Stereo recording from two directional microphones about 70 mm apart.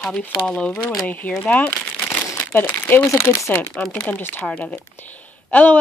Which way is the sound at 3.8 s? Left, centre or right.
Centre.